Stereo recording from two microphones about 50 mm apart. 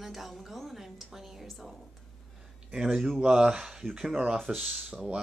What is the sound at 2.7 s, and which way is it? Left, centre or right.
Speech, centre.